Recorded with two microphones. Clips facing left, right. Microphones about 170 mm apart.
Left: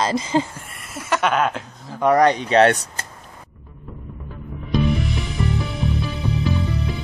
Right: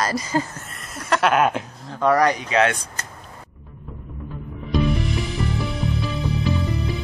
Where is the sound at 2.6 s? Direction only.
35° left (ahead or behind).